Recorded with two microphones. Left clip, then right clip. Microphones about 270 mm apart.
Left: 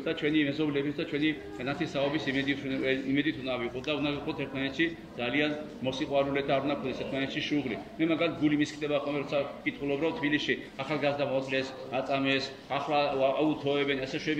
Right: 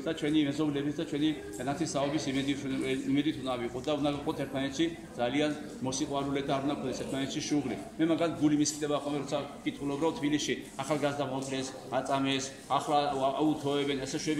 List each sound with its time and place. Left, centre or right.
0.0 s a man's voice: right